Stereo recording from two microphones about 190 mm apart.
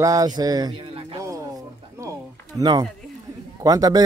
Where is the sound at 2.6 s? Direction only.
20° right (ahead or behind).